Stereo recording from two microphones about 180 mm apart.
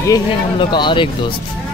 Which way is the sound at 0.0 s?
25° left (ahead or behind).